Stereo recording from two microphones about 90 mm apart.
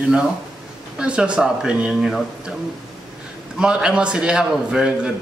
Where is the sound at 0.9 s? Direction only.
10° right (ahead or behind).